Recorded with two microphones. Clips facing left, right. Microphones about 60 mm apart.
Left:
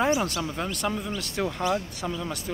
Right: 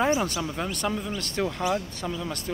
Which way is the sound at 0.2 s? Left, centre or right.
Centre.